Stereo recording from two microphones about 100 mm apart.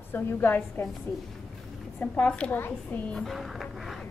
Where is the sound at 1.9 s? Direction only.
15° left (ahead or behind).